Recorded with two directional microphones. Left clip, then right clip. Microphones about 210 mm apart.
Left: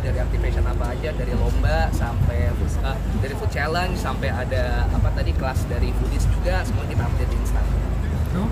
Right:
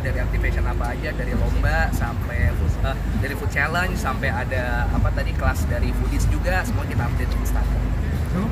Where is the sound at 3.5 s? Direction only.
15° left (ahead or behind).